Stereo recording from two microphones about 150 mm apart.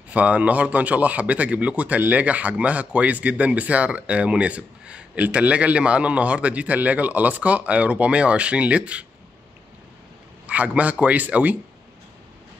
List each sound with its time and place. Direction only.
0.1 s a man's voice: 10° right (ahead or behind)
10.4 s a man's voice: 10° right (ahead or behind)